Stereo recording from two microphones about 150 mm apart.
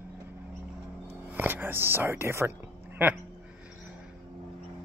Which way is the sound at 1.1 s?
15° right (ahead or behind).